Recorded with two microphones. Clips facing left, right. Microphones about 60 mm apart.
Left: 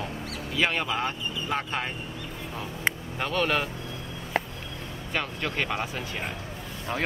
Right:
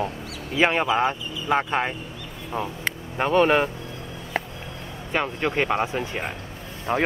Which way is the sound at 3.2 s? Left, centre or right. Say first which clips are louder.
Right 10 dB; right.